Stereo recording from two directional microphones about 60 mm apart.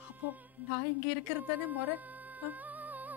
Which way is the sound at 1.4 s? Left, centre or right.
Right.